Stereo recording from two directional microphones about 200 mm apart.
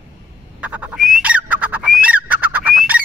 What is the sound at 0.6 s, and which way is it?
Bird, 5° right (ahead or behind).